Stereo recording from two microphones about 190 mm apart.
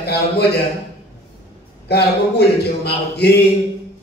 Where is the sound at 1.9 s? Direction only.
60° left (ahead or behind).